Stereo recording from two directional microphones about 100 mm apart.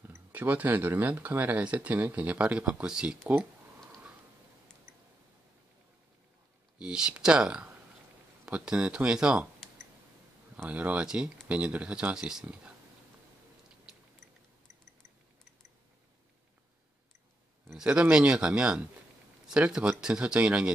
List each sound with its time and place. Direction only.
0.1 s speech: 20° right (ahead or behind)
6.8 s speech: 10° right (ahead or behind)
10.5 s speech: 15° right (ahead or behind)
13.9 s a sound: 5° right (ahead or behind)
17.7 s speech: 10° right (ahead or behind)